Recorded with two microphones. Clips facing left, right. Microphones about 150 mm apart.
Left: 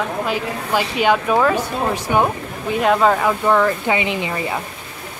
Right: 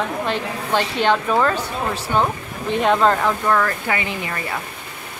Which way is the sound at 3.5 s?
15° left (ahead or behind).